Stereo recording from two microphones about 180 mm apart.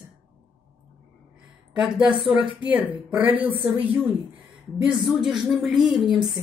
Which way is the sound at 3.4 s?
30° right (ahead or behind).